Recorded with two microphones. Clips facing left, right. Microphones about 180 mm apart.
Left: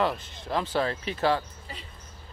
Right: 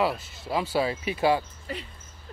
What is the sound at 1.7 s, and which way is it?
Rodents, 65° right (ahead or behind).